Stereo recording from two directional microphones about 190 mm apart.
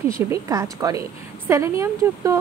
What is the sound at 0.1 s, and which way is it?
Speech, 15° right (ahead or behind).